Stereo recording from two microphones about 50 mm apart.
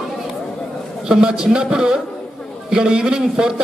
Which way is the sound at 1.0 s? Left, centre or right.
Centre.